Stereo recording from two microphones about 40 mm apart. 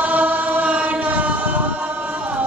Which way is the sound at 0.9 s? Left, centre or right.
Right.